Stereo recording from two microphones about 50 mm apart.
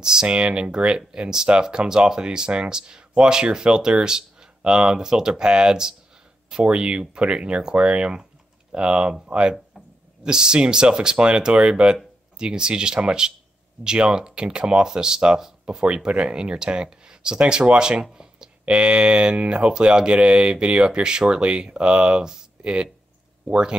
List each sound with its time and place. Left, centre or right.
0.0 s speech: centre